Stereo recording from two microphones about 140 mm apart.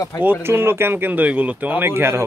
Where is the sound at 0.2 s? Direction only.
15° right (ahead or behind).